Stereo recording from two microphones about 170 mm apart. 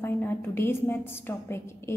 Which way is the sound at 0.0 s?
15° left (ahead or behind).